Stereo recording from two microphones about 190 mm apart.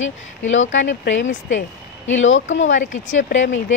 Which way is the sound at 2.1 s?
85° left.